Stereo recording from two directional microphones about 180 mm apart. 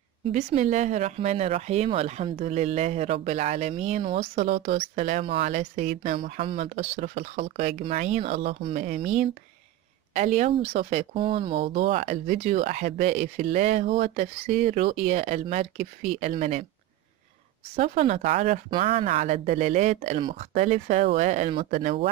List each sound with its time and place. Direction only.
0.3 s speech: 40° right (ahead or behind)
11.8 s speech: 40° right (ahead or behind)
17.6 s speech: 35° right (ahead or behind)